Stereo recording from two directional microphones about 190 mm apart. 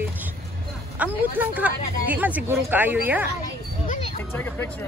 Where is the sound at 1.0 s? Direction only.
10° right (ahead or behind).